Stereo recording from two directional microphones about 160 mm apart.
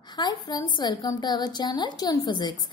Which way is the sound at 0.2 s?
25° left (ahead or behind).